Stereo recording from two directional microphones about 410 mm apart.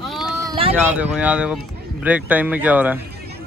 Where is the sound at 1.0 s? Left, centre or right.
Centre.